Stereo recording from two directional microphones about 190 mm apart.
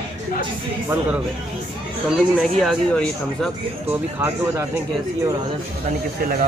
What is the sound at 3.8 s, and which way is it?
Speech, 15° right (ahead or behind).